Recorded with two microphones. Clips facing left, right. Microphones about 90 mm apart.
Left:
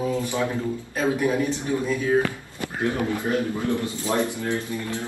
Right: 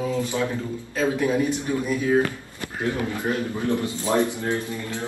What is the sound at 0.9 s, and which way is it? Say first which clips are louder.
Speech: right 1 dB; 20° left (ahead or behind).